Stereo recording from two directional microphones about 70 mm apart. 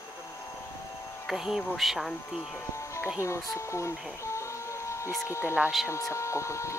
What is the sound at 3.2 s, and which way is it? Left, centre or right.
Speech, left.